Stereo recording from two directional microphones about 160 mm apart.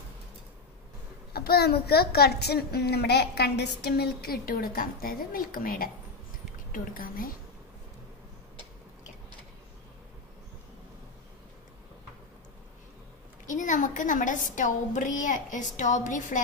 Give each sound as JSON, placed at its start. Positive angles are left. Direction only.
{"t": 1.3, "sound": "a child's voice", "side_deg": 75}
{"t": 13.5, "sound": "a woman's voice", "side_deg": 55}